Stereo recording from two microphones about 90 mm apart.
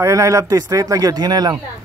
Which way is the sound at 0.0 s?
35° right (ahead or behind).